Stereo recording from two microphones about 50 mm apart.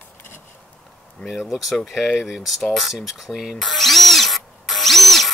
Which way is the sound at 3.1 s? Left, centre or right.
Centre.